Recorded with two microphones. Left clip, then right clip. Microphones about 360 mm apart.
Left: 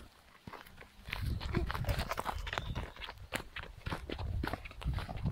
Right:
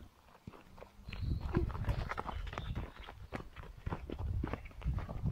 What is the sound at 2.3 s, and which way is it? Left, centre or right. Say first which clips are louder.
Walk: left 6 dB; left.